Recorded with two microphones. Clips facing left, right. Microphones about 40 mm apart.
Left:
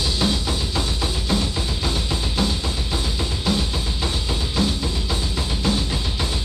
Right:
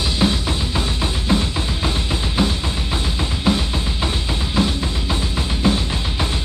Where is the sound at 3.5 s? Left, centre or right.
Right.